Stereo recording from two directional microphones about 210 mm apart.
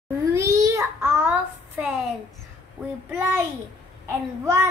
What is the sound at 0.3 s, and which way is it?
A child's voice, 15° right (ahead or behind).